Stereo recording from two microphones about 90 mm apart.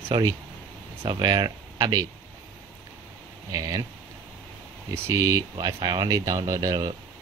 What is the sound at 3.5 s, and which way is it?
Speech, 40° right (ahead or behind).